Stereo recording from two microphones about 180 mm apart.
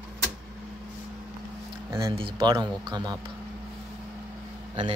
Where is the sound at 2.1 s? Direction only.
25° right (ahead or behind).